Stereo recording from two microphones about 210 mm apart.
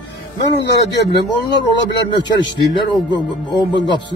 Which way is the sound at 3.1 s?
20° left (ahead or behind).